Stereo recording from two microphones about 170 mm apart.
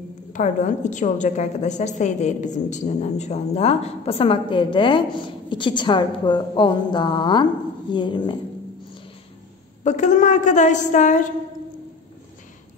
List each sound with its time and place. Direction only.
0.3 s a woman's voice: 50° left (ahead or behind); by 8.4 s 25° left (ahead or behind)
9.8 s a woman's voice: 45° left (ahead or behind)